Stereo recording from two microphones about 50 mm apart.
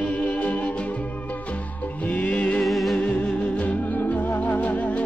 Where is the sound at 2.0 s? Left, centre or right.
Left.